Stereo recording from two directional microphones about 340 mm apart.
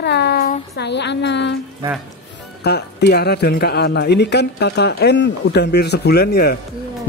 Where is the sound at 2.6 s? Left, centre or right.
Left.